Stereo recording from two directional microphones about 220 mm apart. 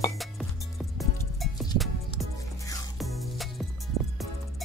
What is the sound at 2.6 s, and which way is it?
Music, 15° left (ahead or behind).